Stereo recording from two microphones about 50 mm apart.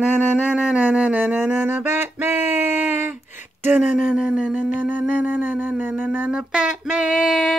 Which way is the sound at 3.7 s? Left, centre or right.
Right.